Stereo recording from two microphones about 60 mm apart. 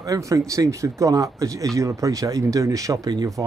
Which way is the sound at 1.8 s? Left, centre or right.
Right.